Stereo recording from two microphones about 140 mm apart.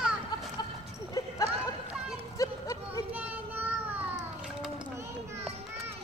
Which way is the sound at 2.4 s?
25° left (ahead or behind).